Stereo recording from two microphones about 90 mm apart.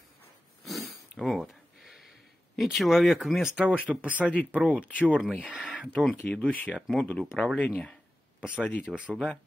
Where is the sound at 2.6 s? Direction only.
Centre (ahead or behind).